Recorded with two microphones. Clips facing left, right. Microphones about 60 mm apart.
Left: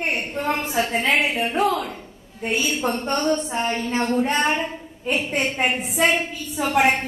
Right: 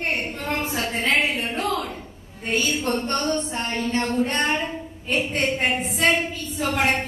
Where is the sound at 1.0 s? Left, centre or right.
Centre.